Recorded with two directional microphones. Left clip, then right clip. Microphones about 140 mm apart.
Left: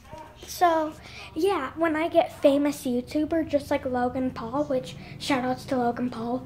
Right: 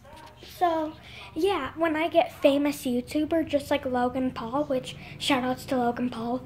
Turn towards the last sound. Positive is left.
turn(degrees=-5)  # may be behind; listen again after turning